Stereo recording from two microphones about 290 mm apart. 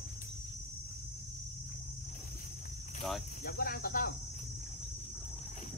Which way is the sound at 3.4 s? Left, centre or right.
Left.